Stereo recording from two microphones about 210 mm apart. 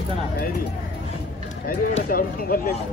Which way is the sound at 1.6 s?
45° left (ahead or behind).